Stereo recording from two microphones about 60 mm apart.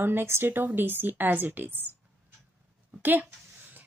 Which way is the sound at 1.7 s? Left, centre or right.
Left.